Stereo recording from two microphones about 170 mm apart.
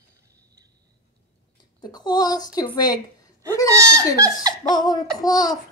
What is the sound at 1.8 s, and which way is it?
Speech, 25° left (ahead or behind).